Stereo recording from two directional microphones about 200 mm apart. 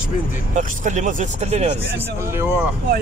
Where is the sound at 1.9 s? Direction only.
15° right (ahead or behind).